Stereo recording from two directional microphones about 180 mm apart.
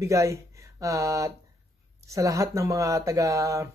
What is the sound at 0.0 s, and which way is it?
Speech, 15° right (ahead or behind).